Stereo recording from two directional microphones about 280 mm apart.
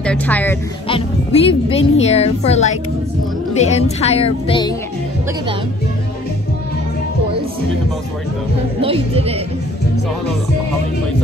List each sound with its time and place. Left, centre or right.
0.0 s speech: centre
0.8 s speech: centre
8.8 s speech: centre